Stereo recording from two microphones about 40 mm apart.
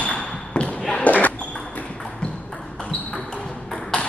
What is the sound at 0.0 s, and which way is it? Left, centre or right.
Basketball bounce, left.